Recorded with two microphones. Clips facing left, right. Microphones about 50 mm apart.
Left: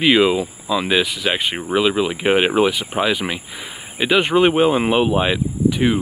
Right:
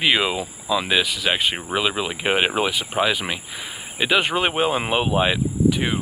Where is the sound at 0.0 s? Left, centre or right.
Centre.